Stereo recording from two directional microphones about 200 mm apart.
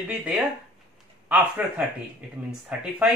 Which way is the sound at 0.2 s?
Centre (ahead or behind).